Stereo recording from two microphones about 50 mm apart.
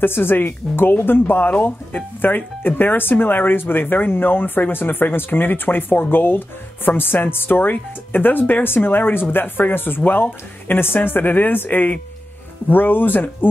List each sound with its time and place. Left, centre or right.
0.0 s speech: left